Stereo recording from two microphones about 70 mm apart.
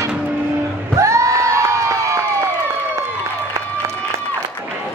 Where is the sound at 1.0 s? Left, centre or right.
Right.